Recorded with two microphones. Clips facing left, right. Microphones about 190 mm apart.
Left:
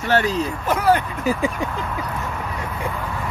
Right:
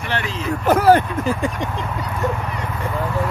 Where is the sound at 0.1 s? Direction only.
40° left (ahead or behind).